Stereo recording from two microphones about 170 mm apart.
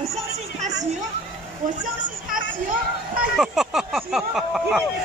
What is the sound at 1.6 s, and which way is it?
Speech, 50° right (ahead or behind).